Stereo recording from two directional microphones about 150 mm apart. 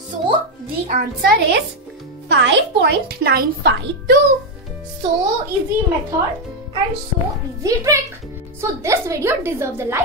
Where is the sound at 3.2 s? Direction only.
90° right.